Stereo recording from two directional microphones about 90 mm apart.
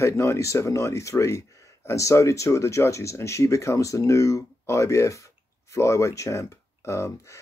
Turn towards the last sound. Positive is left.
turn(degrees=35)  # may be behind; listen again after turning